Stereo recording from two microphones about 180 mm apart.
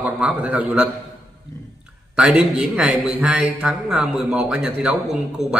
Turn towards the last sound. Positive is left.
turn(degrees=-5)  # may be behind; listen again after turning